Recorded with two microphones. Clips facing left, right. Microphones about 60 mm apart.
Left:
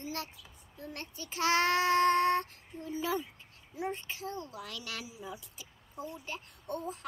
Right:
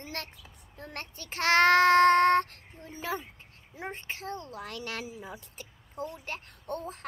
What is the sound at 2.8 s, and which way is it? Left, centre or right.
A woman's voice, right.